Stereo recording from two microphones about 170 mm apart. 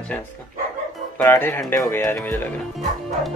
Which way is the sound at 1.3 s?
15° left (ahead or behind).